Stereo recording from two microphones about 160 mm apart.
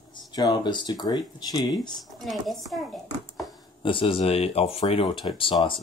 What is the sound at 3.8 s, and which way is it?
Speech, 35° left (ahead or behind).